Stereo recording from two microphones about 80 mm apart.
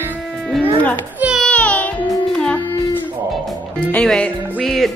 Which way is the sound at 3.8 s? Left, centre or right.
Centre.